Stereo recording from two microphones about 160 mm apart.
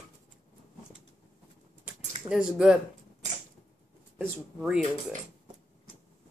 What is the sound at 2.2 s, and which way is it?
Speech, 5° right (ahead or behind).